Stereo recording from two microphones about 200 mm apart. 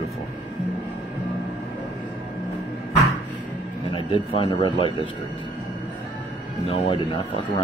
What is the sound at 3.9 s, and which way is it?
Speech, 30° left (ahead or behind).